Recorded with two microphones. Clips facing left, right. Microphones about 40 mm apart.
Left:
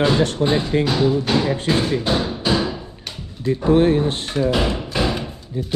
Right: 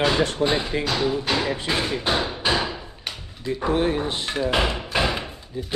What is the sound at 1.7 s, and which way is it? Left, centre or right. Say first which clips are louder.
Thump: left 4 dB; centre.